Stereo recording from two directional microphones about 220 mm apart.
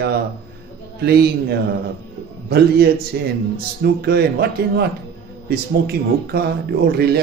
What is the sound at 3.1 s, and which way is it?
A man's voice, 50° right (ahead or behind).